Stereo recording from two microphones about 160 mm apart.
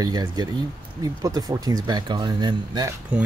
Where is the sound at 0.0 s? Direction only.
25° right (ahead or behind).